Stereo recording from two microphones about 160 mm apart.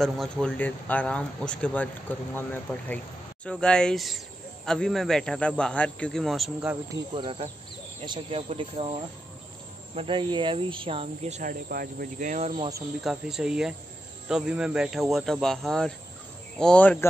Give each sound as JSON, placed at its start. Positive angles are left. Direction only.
{"t": 0.0, "sound": "a man's voice", "side_deg": 5}
{"t": 6.9, "sound": "speech", "side_deg": -30}
{"t": 9.9, "sound": "speech", "side_deg": -30}
{"t": 11.7, "sound": "speech", "side_deg": -65}
{"t": 13.0, "sound": "a man's voice", "side_deg": -5}